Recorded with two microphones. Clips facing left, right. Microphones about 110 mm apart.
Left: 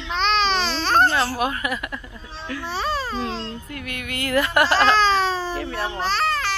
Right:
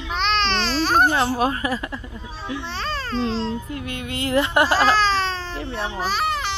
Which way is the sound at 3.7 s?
25° right (ahead or behind).